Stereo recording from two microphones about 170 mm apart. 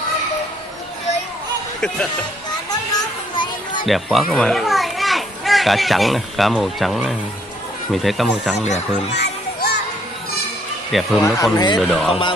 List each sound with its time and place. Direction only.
2.7 s children playing: 25° left (ahead or behind)
3.8 s a child's voice: centre (ahead or behind)
8.5 s speech: 40° left (ahead or behind)
9.1 s children playing: 80° left
10.9 s speech: centre (ahead or behind)
11.5 s speech: 25° left (ahead or behind)
11.8 s speech: 5° left (ahead or behind)
12.1 s speech: 30° left (ahead or behind)